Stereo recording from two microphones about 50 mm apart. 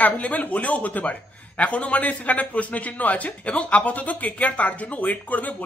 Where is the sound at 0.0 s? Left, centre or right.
Left.